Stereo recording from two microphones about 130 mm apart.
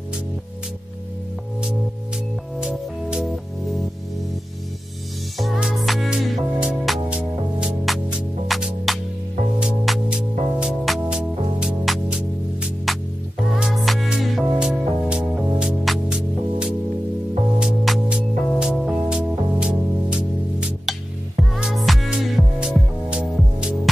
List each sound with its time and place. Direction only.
2.6 s music: 5° right (ahead or behind)
5.4 s music: 5° right (ahead or behind)